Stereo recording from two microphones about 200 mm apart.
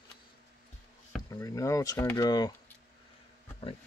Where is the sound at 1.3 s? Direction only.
15° left (ahead or behind).